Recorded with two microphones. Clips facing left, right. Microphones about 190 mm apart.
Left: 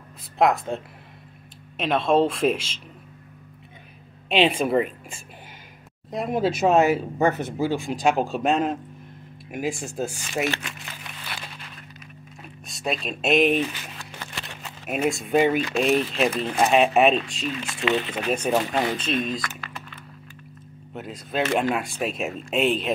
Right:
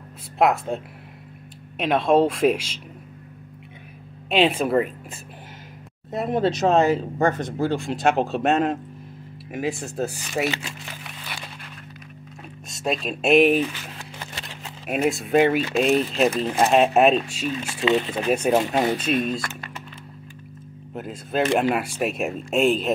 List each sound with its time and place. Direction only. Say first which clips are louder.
0.4 s speech: right 1 dB; 5° right (ahead or behind)
1.8 s speech: right 2 dB; 10° right (ahead or behind)
4.3 s speech: right 1 dB; centre (ahead or behind)
6.1 s speech: right 2 dB; centre (ahead or behind)
12.8 s speech: right 3 dB; centre (ahead or behind)
14.9 s speech: right 2 dB; centre (ahead or behind)
15.9 s speech: even; 40° right (ahead or behind)
16.5 s speech: even; centre (ahead or behind)
17.7 s speech: right 3 dB; 25° right (ahead or behind)
18.2 s speech: right 3 dB; 10° right (ahead or behind)
20.9 s speech: right 3 dB; centre (ahead or behind)
22.6 s speech: right 3 dB; 45° right (ahead or behind)